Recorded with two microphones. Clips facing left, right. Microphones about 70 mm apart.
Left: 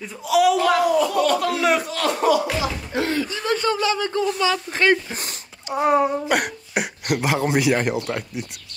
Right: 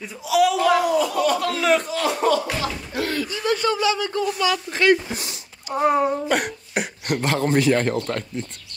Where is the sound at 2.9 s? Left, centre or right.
Left.